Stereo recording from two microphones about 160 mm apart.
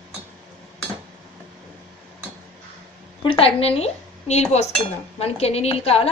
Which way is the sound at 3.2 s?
35° left (ahead or behind).